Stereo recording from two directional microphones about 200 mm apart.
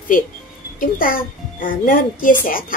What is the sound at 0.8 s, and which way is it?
Speech, 45° left (ahead or behind).